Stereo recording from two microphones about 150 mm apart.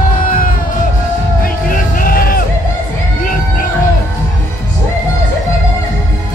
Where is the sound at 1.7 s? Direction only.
70° left (ahead or behind).